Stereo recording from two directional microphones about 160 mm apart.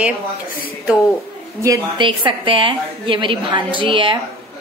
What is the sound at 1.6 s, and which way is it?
A woman's voice, 25° right (ahead or behind).